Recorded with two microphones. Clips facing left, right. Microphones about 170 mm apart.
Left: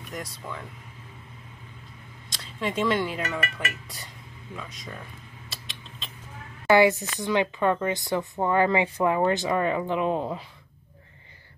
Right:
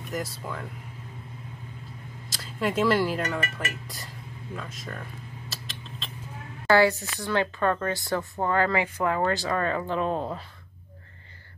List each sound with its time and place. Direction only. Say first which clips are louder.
0.1 s speech: right 4 dB; centre (ahead or behind)
2.2 s speech: right 2 dB; 5° right (ahead or behind)
5.5 s creak: right 3 dB; centre (ahead or behind)
6.7 s speech: left 2 dB; 20° left (ahead or behind)